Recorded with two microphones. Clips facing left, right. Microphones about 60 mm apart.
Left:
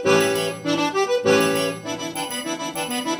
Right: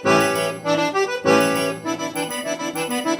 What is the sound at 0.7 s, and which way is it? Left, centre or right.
Accordion, right.